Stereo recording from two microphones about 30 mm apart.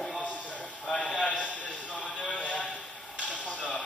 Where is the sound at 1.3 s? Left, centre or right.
Left.